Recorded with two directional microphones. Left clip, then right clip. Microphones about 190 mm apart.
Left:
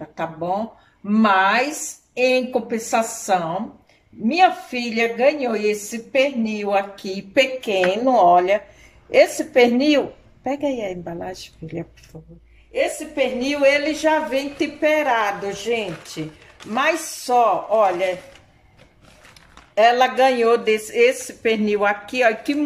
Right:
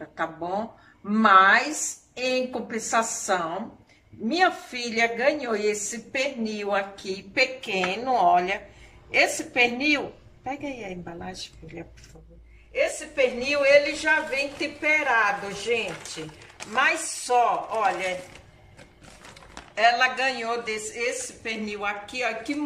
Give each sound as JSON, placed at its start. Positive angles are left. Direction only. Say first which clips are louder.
{"t": 0.1, "sound": "speech", "louder": "left 5 dB", "side_deg": 15}
{"t": 7.0, "sound": "a woman's voice", "louder": "left 6 dB", "side_deg": 30}
{"t": 12.7, "sound": "a woman's voice", "louder": "left 4 dB", "side_deg": 35}
{"t": 19.7, "sound": "a woman's voice", "louder": "left 6 dB", "side_deg": 35}